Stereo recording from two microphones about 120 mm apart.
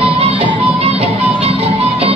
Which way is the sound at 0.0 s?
55° right (ahead or behind).